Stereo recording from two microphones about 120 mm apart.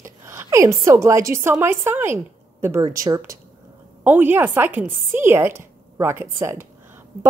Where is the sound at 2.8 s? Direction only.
30° right (ahead or behind).